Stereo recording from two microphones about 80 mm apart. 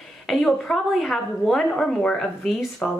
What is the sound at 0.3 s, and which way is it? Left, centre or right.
A woman's voice, centre.